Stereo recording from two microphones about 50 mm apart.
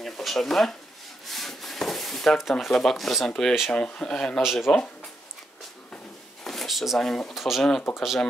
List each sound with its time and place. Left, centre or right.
0.0 s speech: centre
1.3 s a sound: centre
2.6 s speech: centre
3.3 s speech: centre
3.7 s speech: left
4.4 s speech: centre
6.4 s a sound: centre
7.0 s speech: centre
7.3 s speech: centre